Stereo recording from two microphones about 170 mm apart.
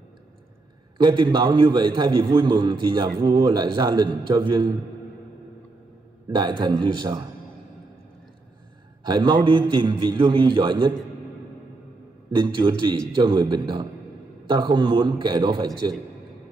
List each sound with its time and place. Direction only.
0.9 s a man's voice: 25° right (ahead or behind)
6.3 s a man's voice: 25° right (ahead or behind)
9.0 s a man's voice: 25° right (ahead or behind)
12.4 s a man's voice: 25° right (ahead or behind)